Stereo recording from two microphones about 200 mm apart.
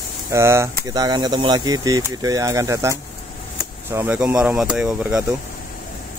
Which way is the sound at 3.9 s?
10° right (ahead or behind).